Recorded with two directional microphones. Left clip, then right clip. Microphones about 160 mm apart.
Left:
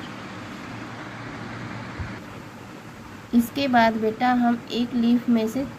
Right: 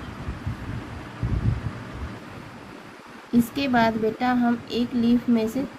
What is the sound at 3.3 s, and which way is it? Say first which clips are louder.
A woman's voice: left 1 dB; 15° left (ahead or behind).